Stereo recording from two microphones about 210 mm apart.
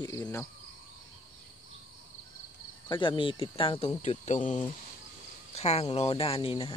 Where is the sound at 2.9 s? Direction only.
25° left (ahead or behind).